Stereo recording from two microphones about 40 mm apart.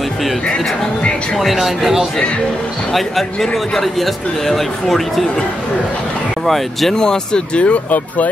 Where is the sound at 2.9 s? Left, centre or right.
Centre.